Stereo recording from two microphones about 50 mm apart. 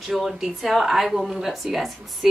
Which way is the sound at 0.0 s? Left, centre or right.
Centre.